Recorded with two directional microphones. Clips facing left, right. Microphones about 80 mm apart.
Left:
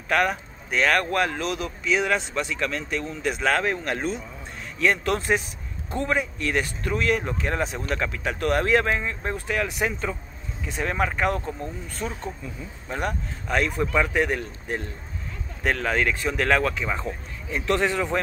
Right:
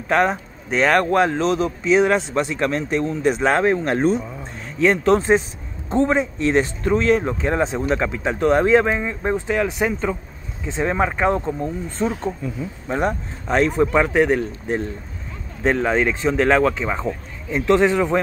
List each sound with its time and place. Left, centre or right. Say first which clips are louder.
0.1 s speech: right 5 dB; right
4.7 s speech: right 7 dB; right